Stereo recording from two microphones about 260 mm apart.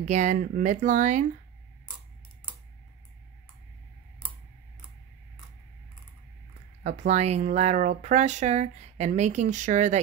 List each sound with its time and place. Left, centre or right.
0.0 s speech: right
6.8 s speech: right